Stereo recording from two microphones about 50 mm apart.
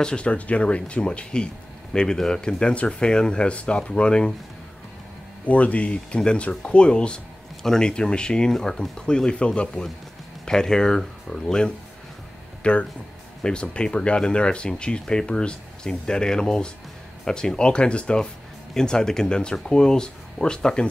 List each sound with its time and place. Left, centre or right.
0.0 s speech: left
5.4 s speech: left